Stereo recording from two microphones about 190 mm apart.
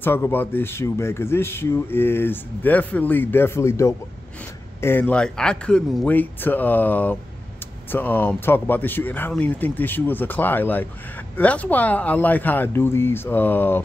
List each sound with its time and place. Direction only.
0.0 s speech: 10° left (ahead or behind)